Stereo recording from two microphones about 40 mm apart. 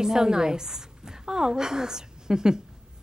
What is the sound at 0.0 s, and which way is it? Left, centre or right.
A woman's voice, centre.